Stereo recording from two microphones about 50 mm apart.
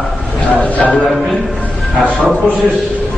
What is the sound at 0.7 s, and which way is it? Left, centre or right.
Speech, left.